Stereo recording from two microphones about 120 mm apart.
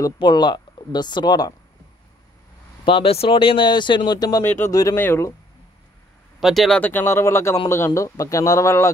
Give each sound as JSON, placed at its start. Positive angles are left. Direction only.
{"t": 0.0, "sound": "speech", "side_deg": 40}
{"t": 2.8, "sound": "a man's voice", "side_deg": 50}
{"t": 6.4, "sound": "speech", "side_deg": 0}
{"t": 6.8, "sound": "a man's voice", "side_deg": 15}